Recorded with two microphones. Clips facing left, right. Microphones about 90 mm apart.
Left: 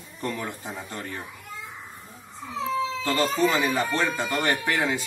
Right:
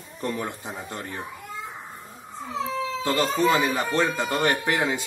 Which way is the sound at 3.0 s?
20° right (ahead or behind).